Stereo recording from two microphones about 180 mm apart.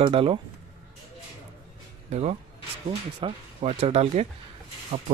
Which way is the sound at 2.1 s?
35° right (ahead or behind).